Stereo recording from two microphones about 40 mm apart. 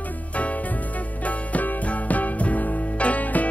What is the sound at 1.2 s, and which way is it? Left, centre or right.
Music, left.